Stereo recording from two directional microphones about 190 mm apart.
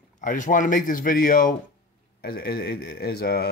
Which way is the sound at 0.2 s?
45° left (ahead or behind).